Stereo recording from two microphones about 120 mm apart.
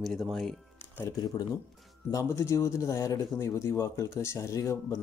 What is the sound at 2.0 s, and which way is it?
Speech, 25° left (ahead or behind).